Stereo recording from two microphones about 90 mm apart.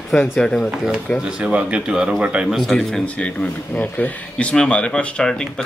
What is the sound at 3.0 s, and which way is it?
Speech, 15° left (ahead or behind).